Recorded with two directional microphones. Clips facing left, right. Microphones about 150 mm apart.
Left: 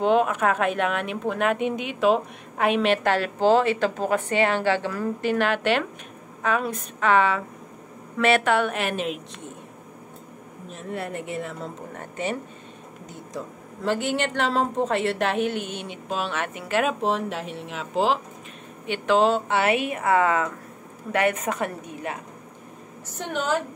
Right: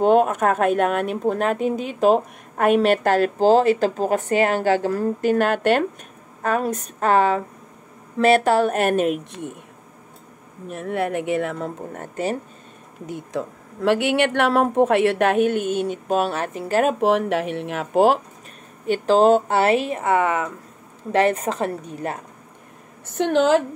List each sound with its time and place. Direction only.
0.0 s speech: 45° right (ahead or behind)
10.7 s speech: 60° right (ahead or behind); by 12.4 s 40° right (ahead or behind)
13.8 s speech: 70° right (ahead or behind); by 16.9 s 40° right (ahead or behind)
17.0 s speech: 65° right (ahead or behind)
18.9 s speech: 40° right (ahead or behind); by 20.5 s 20° right (ahead or behind)
21.1 s speech: 30° right (ahead or behind)
23.1 s a woman's voice: 80° right